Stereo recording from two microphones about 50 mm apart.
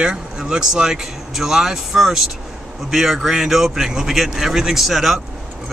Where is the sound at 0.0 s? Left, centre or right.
Centre.